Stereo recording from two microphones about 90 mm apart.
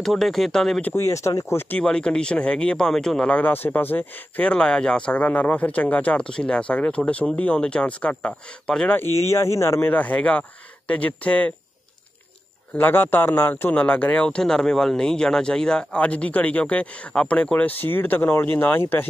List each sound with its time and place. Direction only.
0.0 s speech: centre (ahead or behind)
0.9 s speech: 35° left (ahead or behind)
1.7 s a man's voice: 10° left (ahead or behind)
9.0 s a man's voice: 30° left (ahead or behind); by 11.5 s 15° left (ahead or behind)
12.7 s a man's voice: 20° left (ahead or behind)